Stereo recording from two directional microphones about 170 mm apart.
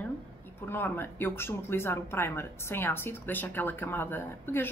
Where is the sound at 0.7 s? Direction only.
10° left (ahead or behind).